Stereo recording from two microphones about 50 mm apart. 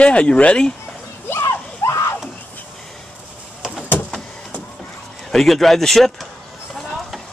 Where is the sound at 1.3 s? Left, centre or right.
Left.